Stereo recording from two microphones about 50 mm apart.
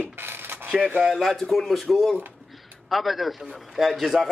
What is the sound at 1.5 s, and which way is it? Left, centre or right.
A man's voice, centre.